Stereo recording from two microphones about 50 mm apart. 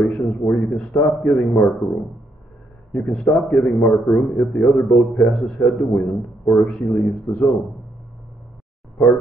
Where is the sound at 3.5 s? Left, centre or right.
Left.